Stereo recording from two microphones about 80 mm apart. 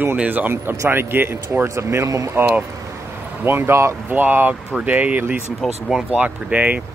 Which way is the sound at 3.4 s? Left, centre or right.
Right.